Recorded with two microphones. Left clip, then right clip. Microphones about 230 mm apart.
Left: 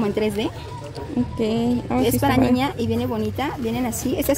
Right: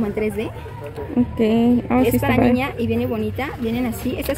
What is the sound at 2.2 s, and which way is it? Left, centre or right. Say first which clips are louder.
A woman's voice: right 1 dB; left.